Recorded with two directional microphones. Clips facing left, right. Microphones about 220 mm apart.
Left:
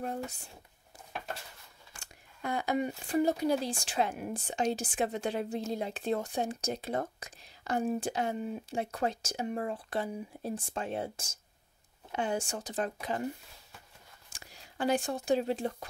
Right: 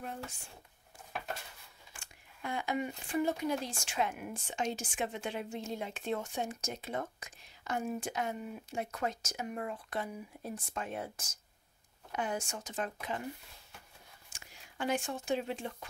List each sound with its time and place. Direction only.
0.0 s speech: 40° left (ahead or behind)
2.0 s speech: 40° left (ahead or behind)
14.3 s speech: 35° left (ahead or behind)